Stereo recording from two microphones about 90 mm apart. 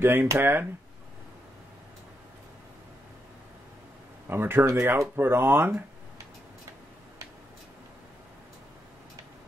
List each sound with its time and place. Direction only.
0.0 s speech: 25° right (ahead or behind)
4.3 s speech: 25° right (ahead or behind)